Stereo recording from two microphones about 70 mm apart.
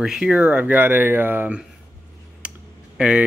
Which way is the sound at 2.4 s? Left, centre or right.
Centre.